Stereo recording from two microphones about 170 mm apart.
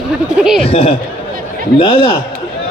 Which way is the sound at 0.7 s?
35° left (ahead or behind).